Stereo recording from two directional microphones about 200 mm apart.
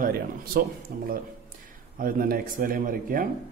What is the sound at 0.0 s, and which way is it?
Speech, 50° right (ahead or behind).